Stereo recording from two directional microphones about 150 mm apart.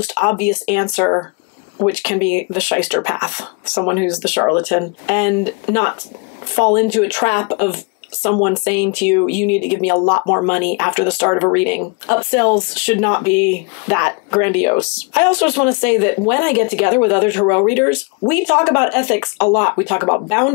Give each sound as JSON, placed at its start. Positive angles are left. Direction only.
{"t": 0.2, "sound": "speech", "side_deg": 20}
{"t": 1.9, "sound": "speech", "side_deg": 15}
{"t": 9.9, "sound": "speech", "side_deg": 30}